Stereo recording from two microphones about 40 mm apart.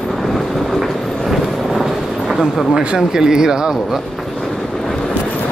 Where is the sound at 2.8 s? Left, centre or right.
Centre.